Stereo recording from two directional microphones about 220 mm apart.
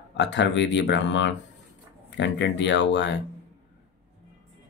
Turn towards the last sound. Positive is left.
turn(degrees=55)  # may be behind; listen again after turning